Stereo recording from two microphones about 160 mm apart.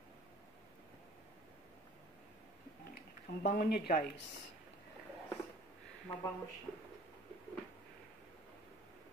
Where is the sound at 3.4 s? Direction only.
85° left.